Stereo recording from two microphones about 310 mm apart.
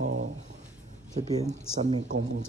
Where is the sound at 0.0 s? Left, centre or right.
Right.